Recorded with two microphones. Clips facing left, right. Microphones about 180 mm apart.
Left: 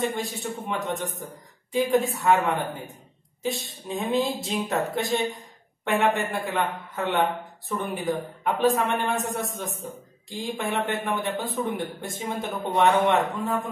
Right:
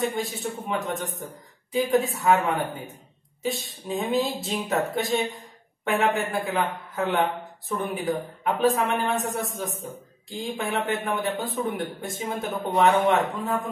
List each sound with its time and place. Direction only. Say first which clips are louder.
0.0 s a man's voice: right 1 dB; centre (ahead or behind)